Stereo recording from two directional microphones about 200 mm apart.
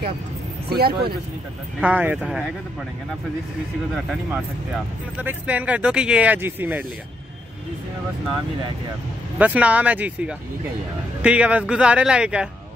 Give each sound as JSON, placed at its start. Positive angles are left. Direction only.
{"t": 0.7, "sound": "speech", "side_deg": -50}
{"t": 1.8, "sound": "speech", "side_deg": -5}
{"t": 3.9, "sound": "speech", "side_deg": 0}
{"t": 9.4, "sound": "speech", "side_deg": -5}